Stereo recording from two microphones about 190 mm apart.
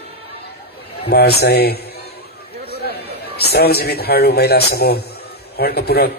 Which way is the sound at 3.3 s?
60° left (ahead or behind).